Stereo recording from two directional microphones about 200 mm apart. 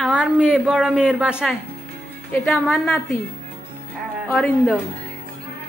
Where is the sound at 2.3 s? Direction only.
5° left (ahead or behind).